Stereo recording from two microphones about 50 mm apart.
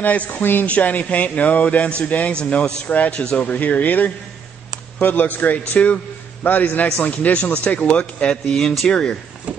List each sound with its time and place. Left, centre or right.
0.0 s a man's voice: left
0.7 s a man's voice: left